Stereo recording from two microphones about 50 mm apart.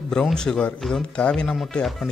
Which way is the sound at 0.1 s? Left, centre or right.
Centre.